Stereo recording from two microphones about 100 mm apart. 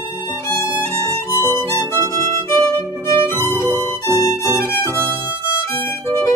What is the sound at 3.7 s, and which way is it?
Music, 25° right (ahead or behind).